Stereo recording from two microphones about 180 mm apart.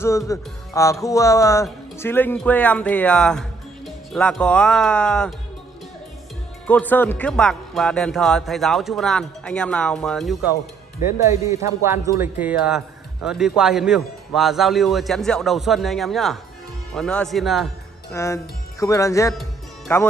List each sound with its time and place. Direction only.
0.3 s speech: 15° left (ahead or behind)
6.7 s speech: 10° left (ahead or behind)
11.2 s speech: 15° right (ahead or behind); by 17.6 s centre (ahead or behind)
18.1 s speech: 15° left (ahead or behind)